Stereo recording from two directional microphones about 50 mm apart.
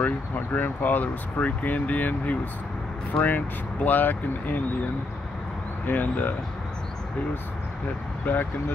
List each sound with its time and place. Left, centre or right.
0.0 s speech: left
5.9 s speech: left
8.3 s speech: left